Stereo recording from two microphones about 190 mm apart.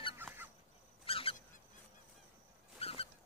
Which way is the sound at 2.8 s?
30° left (ahead or behind).